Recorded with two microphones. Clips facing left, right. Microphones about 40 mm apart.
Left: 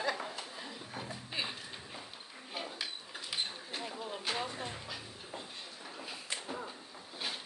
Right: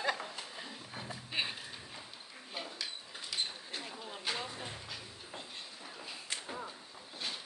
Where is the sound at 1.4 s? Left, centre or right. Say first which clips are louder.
Right 2 dB; right.